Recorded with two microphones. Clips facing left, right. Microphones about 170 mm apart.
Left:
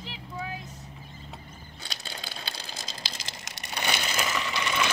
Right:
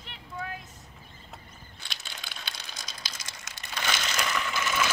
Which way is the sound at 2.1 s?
30° left (ahead or behind).